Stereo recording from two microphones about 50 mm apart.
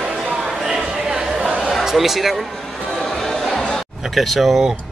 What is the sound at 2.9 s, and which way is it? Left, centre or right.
Music, centre.